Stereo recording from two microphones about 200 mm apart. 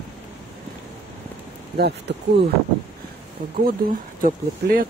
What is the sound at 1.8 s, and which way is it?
Speech, 60° right (ahead or behind).